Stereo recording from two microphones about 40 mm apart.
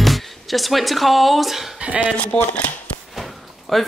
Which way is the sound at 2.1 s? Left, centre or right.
Left.